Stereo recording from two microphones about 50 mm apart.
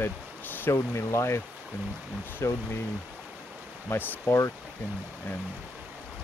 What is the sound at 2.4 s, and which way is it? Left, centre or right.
Speech, left.